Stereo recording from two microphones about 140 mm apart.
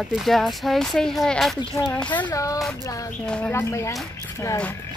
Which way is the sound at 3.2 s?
10° left (ahead or behind).